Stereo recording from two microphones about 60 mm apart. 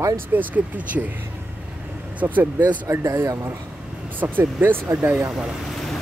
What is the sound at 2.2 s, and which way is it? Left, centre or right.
Speech, right.